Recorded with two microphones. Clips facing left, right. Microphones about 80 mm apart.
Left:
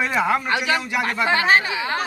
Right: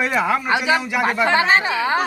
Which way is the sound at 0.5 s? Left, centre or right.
Centre.